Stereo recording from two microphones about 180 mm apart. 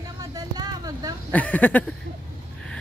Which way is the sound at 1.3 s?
10° left (ahead or behind).